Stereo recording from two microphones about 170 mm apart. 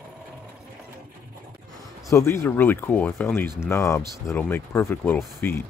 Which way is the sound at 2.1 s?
15° left (ahead or behind).